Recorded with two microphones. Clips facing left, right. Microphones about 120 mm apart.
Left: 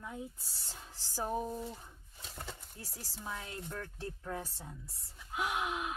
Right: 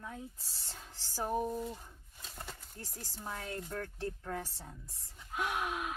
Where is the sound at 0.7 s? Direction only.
15° left (ahead or behind).